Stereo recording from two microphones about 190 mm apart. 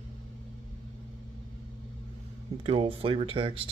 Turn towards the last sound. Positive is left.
turn(degrees=-30)  # may be behind; listen again after turning